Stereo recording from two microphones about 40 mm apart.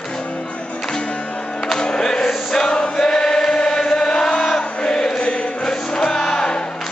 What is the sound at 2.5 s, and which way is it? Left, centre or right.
Chant, left.